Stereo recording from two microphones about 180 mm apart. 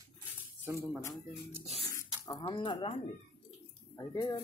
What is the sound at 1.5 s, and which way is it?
Speech, 35° right (ahead or behind).